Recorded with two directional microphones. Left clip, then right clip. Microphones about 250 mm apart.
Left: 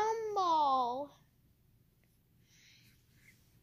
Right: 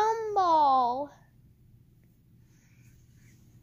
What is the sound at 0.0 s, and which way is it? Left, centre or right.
Babbling, centre.